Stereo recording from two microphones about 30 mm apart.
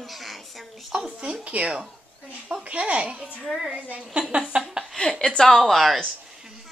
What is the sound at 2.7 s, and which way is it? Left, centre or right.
Speech, right.